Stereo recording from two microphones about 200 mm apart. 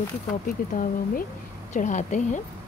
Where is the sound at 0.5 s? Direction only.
45° left (ahead or behind).